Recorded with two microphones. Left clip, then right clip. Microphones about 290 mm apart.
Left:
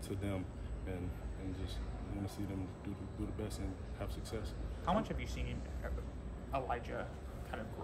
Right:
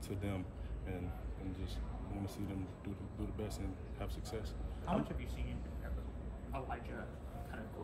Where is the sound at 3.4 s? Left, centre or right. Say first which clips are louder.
Left 1 dB; centre.